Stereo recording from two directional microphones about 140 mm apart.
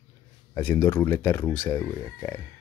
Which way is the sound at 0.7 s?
15° left (ahead or behind).